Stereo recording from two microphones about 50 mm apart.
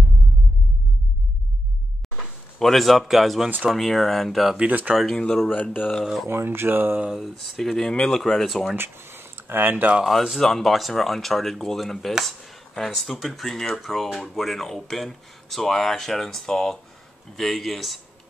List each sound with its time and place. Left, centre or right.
2.1 s speech: centre
3.4 s speech: right
3.7 s speech: centre
4.6 s speech: right
5.1 s speech: centre
5.5 s speech: left
6.2 s speech: right
7.1 s speech: centre
8.7 s speech: right
10.4 s speech: centre